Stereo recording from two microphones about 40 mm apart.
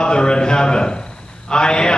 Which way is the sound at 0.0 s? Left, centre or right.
Left.